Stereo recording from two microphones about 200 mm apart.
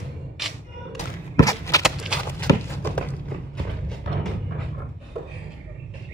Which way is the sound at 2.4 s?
10° left (ahead or behind).